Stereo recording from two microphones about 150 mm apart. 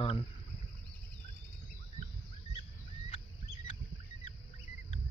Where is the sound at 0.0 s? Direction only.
40° left (ahead or behind).